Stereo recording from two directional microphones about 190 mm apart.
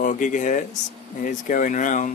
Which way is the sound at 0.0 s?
40° left (ahead or behind).